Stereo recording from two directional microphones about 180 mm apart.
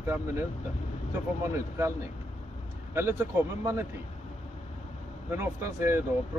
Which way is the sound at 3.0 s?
15° right (ahead or behind).